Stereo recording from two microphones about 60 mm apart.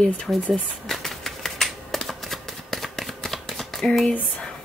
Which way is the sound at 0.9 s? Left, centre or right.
Centre.